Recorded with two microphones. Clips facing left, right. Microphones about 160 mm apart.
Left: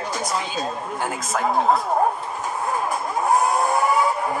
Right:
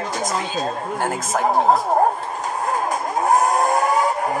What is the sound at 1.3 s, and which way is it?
Speech, 30° right (ahead or behind).